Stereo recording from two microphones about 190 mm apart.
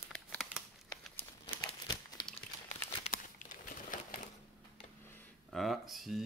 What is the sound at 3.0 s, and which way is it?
Crumpling, 45° left (ahead or behind).